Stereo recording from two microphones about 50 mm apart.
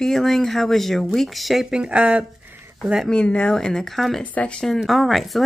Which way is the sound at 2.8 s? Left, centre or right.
Centre.